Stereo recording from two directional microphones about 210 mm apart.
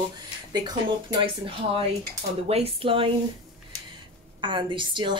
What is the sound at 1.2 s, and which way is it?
A woman's voice, 25° right (ahead or behind).